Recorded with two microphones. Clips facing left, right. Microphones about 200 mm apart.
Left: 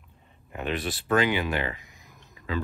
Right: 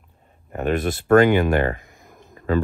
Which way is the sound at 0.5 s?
45° right (ahead or behind).